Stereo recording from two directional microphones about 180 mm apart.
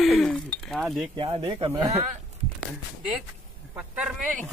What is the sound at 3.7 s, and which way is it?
Speech, 5° right (ahead or behind).